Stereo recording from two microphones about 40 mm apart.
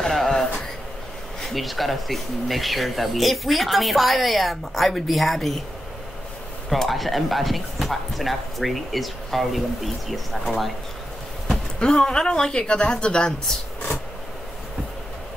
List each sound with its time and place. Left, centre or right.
0.3 s a sound: centre
1.4 s speech: centre
6.7 s speech: centre
11.8 s a woman's voice: centre